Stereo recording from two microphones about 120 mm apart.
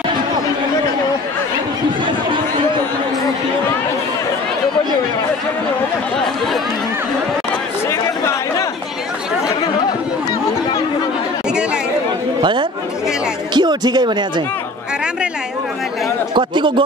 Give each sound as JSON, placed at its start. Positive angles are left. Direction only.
{"t": 12.4, "sound": "chatter", "side_deg": -40}
{"t": 13.5, "sound": "music", "side_deg": -40}
{"t": 16.3, "sound": "speech", "side_deg": -40}